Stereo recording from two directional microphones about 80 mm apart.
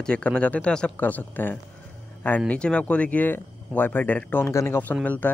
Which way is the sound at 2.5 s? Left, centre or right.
Centre.